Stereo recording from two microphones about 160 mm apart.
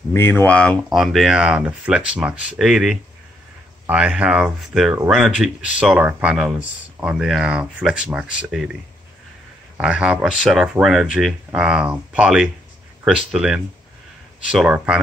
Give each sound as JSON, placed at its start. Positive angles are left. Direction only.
{"t": 0.1, "sound": "speech", "side_deg": 15}
{"t": 9.8, "sound": "speech", "side_deg": -5}